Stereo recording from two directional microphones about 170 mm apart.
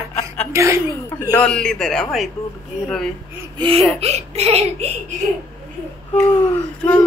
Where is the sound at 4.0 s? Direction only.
40° right (ahead or behind).